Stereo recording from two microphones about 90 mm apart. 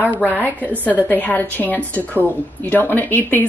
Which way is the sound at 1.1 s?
20° left (ahead or behind).